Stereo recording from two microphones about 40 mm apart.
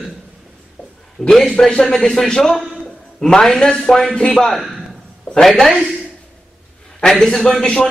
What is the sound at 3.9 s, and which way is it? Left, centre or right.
Speech, centre.